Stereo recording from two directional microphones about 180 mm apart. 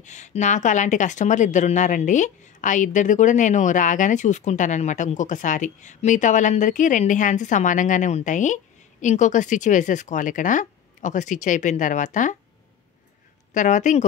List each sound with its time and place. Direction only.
0.0 s speech: 40° left (ahead or behind)
13.5 s speech: 45° left (ahead or behind)